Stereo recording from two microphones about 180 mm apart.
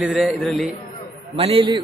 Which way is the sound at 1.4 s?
30° right (ahead or behind).